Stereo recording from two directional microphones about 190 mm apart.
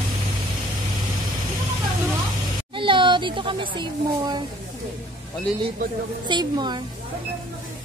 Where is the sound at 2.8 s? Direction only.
25° right (ahead or behind).